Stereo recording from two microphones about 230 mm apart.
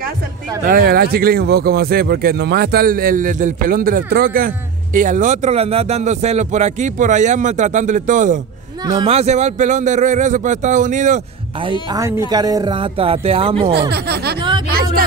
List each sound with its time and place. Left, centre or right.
0.7 s speech: right
8.8 s speech: right
12.3 s speech: centre
13.7 s speech: right